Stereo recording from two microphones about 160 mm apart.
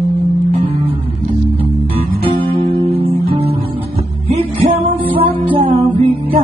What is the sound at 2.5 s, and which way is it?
Guitar, 35° right (ahead or behind).